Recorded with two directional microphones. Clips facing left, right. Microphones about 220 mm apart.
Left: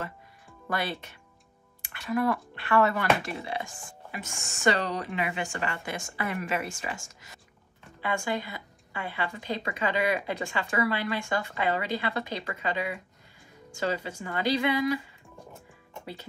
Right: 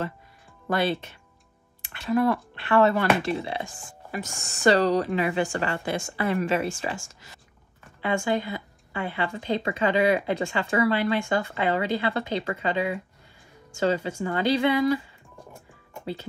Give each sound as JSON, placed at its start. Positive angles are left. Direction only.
{"t": 0.7, "sound": "a woman's voice", "side_deg": -25}
{"t": 4.1, "sound": "a woman's voice", "side_deg": -40}